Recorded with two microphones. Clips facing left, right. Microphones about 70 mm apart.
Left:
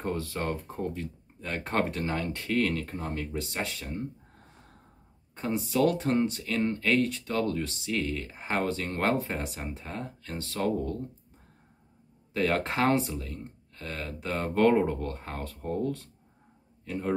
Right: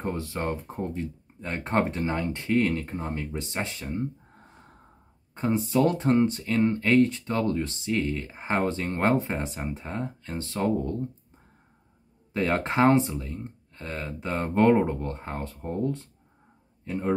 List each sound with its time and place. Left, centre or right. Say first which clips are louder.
0.0 s speech: right 2 dB; right
5.3 s speech: right 5 dB; right
12.3 s a man's voice: right 1 dB; right